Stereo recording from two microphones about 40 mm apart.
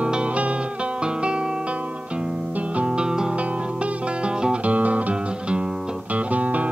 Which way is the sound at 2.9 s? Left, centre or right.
Centre.